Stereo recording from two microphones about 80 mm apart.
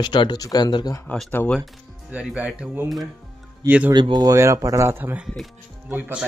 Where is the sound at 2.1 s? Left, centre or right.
Centre.